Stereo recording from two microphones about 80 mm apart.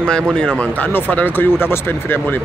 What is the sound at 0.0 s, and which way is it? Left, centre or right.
Speech, centre.